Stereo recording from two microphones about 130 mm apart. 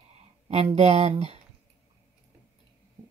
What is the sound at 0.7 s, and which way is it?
Speech, 55° right (ahead or behind).